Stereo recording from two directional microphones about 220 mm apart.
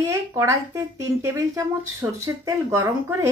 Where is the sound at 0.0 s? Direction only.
15° right (ahead or behind).